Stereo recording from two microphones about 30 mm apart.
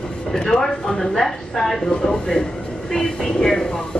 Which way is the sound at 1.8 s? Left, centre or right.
Left.